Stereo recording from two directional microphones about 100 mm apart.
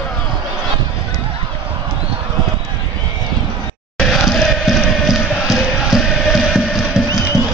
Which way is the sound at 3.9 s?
5° left (ahead or behind).